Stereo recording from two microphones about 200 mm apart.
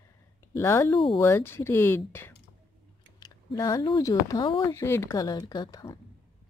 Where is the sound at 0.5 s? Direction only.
10° left (ahead or behind).